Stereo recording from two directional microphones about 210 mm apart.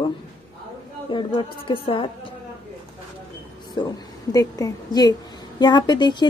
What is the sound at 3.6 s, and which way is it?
A woman's voice, 20° left (ahead or behind).